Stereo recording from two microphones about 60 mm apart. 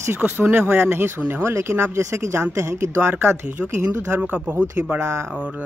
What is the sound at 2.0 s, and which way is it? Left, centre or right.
Speech, right.